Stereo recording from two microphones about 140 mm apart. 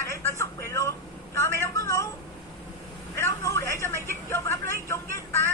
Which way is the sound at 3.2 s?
20° left (ahead or behind).